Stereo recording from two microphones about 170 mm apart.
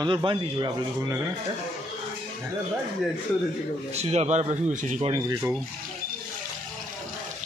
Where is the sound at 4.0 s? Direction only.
40° right (ahead or behind).